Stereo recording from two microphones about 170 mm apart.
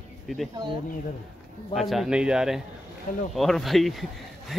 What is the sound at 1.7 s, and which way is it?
Speech, centre (ahead or behind).